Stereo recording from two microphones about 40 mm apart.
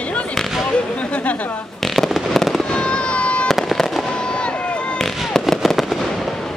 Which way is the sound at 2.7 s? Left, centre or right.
Left.